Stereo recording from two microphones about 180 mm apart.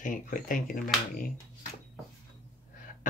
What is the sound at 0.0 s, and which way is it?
Speech, 45° left (ahead or behind).